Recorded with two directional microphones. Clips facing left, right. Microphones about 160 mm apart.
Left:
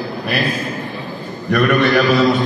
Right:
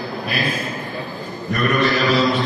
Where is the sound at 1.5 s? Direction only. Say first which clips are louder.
Left 5 dB; 55° left (ahead or behind).